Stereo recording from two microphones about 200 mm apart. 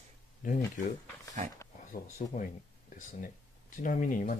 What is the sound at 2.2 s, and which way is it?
Speech, 35° left (ahead or behind).